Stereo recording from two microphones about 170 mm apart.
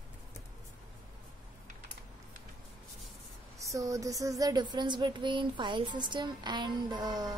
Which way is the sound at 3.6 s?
20° right (ahead or behind).